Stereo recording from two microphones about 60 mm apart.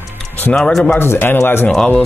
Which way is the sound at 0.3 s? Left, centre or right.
Left.